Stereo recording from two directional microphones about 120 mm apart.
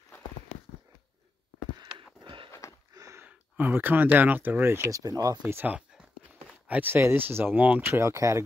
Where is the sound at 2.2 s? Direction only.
40° right (ahead or behind).